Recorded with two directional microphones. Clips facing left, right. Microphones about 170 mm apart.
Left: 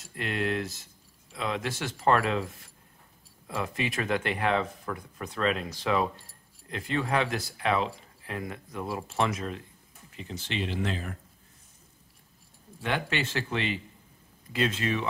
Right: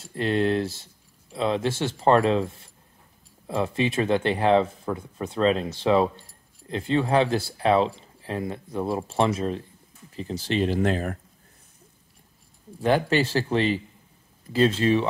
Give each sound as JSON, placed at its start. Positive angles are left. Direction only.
{"t": 0.0, "sound": "speech", "side_deg": -30}
{"t": 12.8, "sound": "speech", "side_deg": -35}